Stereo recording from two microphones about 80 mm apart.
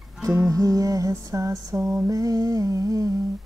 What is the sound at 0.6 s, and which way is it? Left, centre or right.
Lullaby, right.